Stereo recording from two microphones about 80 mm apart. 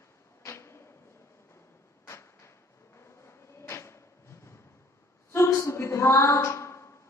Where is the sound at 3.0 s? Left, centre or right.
Left.